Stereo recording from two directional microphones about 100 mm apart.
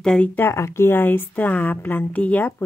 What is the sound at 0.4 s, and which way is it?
Speech, 25° left (ahead or behind).